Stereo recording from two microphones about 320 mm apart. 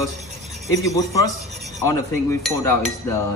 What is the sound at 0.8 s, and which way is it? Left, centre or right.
A man's voice, centre.